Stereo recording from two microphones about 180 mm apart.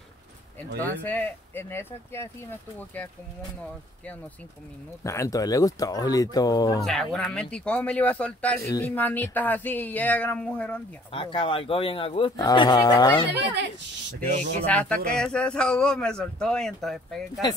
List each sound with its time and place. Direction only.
0.7 s speech: 10° left (ahead or behind)
5.0 s speech: 15° left (ahead or behind)
6.8 s a man's voice: 5° left (ahead or behind)
11.1 s speech: 30° left (ahead or behind)
14.3 s speech: 40° right (ahead or behind)
14.7 s a man's voice: 10° left (ahead or behind)